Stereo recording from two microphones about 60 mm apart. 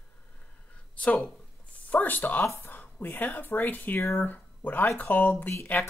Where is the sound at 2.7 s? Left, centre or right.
Left.